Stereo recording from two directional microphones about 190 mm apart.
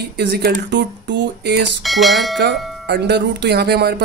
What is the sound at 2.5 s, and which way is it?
Music, centre (ahead or behind).